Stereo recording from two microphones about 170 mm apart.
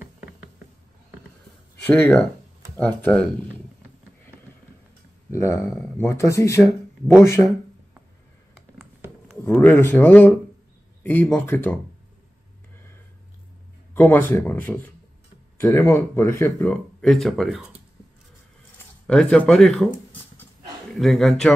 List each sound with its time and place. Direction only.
0.0 s knock: 5° right (ahead or behind)
1.9 s speech: 10° left (ahead or behind)
5.3 s speech: 15° left (ahead or behind)
9.4 s speech: 10° left (ahead or behind)
13.9 s speech: 10° left (ahead or behind)
19.0 s a man's voice: 5° left (ahead or behind)